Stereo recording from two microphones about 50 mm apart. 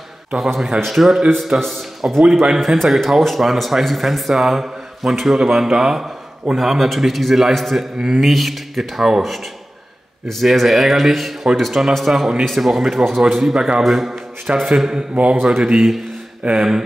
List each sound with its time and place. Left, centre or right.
0.4 s speech: centre
13.6 s speech: centre
13.8 s a man's voice: centre